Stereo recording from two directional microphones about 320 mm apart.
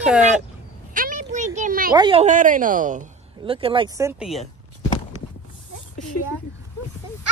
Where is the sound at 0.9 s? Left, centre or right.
Right.